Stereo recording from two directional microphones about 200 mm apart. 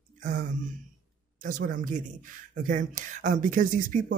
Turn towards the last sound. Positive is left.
turn(degrees=-40)  # may be behind; listen again after turning